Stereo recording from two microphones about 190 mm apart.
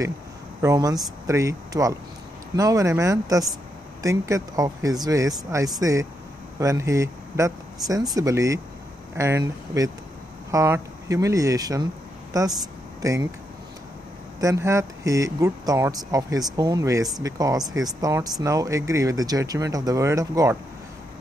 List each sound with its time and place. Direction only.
0.6 s speech: 20° right (ahead or behind)
14.4 s speech: 15° right (ahead or behind)